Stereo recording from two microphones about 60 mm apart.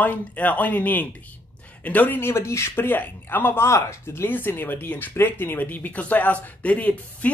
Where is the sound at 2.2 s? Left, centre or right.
Left.